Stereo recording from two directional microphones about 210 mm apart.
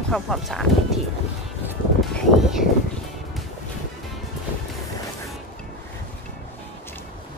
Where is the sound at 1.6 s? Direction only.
5° right (ahead or behind).